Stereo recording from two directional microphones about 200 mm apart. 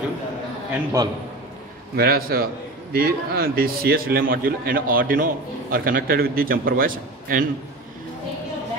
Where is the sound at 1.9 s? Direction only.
50° right (ahead or behind).